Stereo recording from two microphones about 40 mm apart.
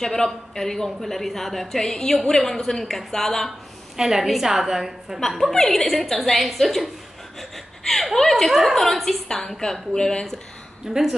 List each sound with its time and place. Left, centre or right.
0.0 s a woman's voice: centre
3.9 s a woman's voice: centre
5.5 s a woman's voice: centre
9.3 s a woman's voice: centre
10.9 s a woman's voice: centre